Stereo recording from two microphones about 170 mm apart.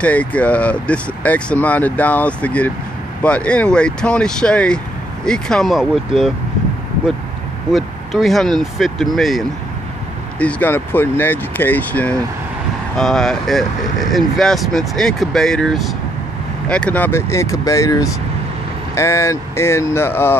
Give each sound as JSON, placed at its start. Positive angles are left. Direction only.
{"t": 0.0, "sound": "speech", "side_deg": 10}
{"t": 7.7, "sound": "speech", "side_deg": 0}
{"t": 10.4, "sound": "speech", "side_deg": 10}